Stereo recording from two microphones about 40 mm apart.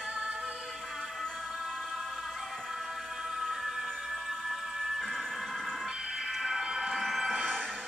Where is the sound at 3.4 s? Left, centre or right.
Centre.